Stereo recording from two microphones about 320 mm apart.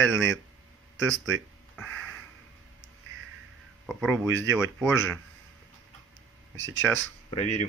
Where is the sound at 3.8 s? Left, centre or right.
Centre.